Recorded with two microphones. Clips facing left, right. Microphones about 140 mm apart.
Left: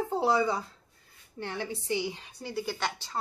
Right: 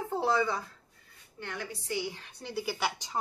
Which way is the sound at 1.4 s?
30° left (ahead or behind).